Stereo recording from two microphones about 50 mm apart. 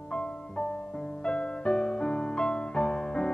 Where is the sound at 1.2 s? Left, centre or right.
Centre.